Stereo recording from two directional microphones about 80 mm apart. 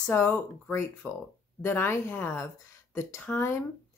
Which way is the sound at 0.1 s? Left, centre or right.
Left.